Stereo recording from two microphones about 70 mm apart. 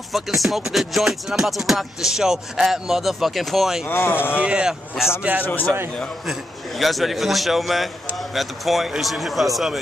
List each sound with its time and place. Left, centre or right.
0.1 s music: centre
3.8 s speech: left
4.4 s speech: centre
5.4 s speech: left
6.8 s music: centre